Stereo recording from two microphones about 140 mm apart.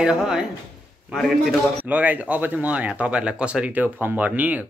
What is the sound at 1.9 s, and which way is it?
Speech, 10° right (ahead or behind).